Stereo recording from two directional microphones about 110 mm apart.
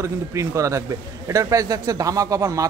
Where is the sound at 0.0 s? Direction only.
25° right (ahead or behind).